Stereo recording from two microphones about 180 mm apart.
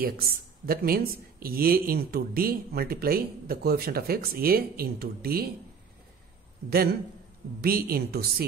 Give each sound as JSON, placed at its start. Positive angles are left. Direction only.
{"t": 0.0, "sound": "speech", "side_deg": -55}
{"t": 6.7, "sound": "speech", "side_deg": -60}